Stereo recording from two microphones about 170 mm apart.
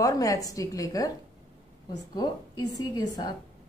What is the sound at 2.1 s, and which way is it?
A woman's voice, 25° left (ahead or behind).